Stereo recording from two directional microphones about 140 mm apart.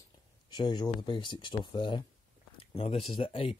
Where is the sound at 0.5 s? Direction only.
35° left (ahead or behind).